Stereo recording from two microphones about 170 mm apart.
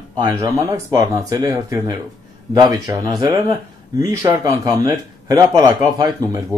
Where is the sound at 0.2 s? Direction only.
20° right (ahead or behind).